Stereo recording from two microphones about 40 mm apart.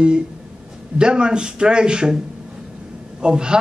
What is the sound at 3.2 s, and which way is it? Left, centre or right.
Speech, right.